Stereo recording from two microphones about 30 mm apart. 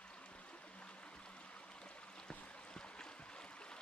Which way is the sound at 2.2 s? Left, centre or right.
Left.